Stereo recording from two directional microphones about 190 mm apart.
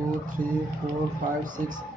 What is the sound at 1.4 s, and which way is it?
Speech, 45° right (ahead or behind).